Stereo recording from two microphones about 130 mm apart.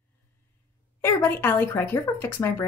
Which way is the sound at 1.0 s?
15° left (ahead or behind).